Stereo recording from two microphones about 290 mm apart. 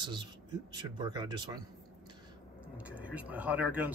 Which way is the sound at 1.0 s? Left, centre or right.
Centre.